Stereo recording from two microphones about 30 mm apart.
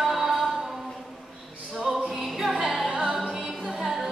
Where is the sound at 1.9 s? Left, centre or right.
Centre.